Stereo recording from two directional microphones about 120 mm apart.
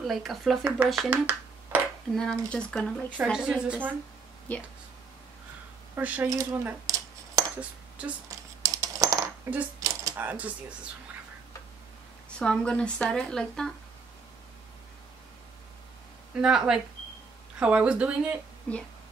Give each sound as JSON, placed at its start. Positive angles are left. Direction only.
{"t": 0.0, "sound": "a woman's voice", "side_deg": 0}
{"t": 1.1, "sound": "finger snapping", "side_deg": -15}
{"t": 2.1, "sound": "speech", "side_deg": 5}
{"t": 3.3, "sound": "speech", "side_deg": -5}
{"t": 4.5, "sound": "speech", "side_deg": 10}
{"t": 5.9, "sound": "speech", "side_deg": -10}
{"t": 6.2, "sound": "cutlery", "side_deg": -25}
{"t": 8.0, "sound": "speech", "side_deg": -10}
{"t": 8.6, "sound": "typing", "side_deg": -25}
{"t": 9.8, "sound": "a sound", "side_deg": -30}
{"t": 10.1, "sound": "speech", "side_deg": -15}
{"t": 12.4, "sound": "a woman's voice", "side_deg": 5}
{"t": 16.3, "sound": "a woman's voice", "side_deg": -5}